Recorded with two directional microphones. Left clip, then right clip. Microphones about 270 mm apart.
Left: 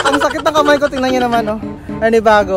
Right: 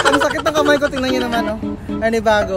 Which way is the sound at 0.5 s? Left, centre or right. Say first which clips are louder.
Left 5 dB; centre.